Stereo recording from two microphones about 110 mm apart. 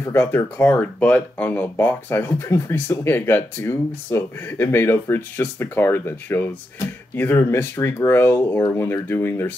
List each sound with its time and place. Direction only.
0.0 s speech: 20° left (ahead or behind)